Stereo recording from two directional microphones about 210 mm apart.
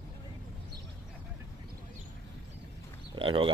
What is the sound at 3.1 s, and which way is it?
Speech, 25° right (ahead or behind).